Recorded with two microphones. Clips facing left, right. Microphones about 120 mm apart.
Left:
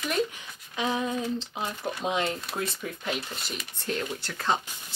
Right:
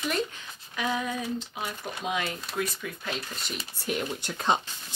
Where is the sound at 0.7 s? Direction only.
25° left (ahead or behind).